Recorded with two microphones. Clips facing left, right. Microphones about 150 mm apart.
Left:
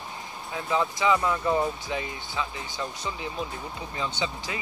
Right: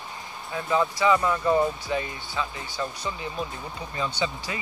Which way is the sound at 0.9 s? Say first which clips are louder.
Right 2 dB; 10° left (ahead or behind).